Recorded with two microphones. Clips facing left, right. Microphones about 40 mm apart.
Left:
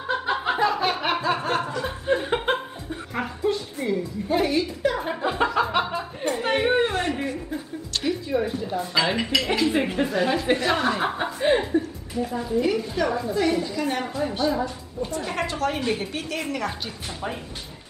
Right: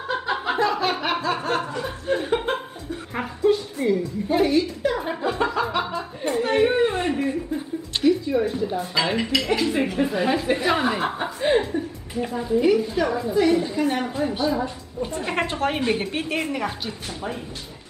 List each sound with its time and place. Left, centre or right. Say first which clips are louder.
0.1 s snicker: even; centre
1.9 s chuckle: left 2 dB; centre
3.2 s a sound: right 4 dB; centre
5.3 s music: left 2 dB; centre
6.3 s chatter: right 3 dB; centre
6.9 s a sound: right 1 dB; right
8.0 s a woman's voice: right 5 dB; centre
9.7 s speech: even; centre
10.0 s speech: even; centre
11.0 s chuckle: even; centre
12.3 s a woman's voice: right 5 dB; centre
13.6 s a woman's voice: right 3 dB; right
13.8 s a woman's voice: right 2 dB; centre
15.0 s a woman's voice: right 3 dB; right